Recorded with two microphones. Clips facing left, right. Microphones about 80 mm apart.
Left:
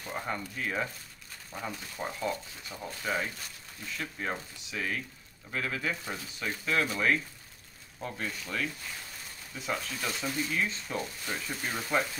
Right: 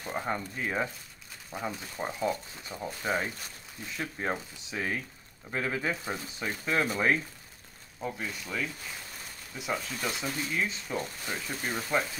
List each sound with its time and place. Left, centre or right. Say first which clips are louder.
0.0 s speech: right 3 dB; centre
8.0 s speech: right 1 dB; centre